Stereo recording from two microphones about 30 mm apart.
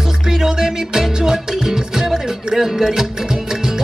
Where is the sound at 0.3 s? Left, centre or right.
Centre.